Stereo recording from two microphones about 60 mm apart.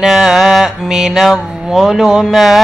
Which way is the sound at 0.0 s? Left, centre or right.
Centre.